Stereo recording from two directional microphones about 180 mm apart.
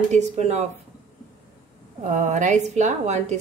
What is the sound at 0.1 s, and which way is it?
Speech, 40° right (ahead or behind).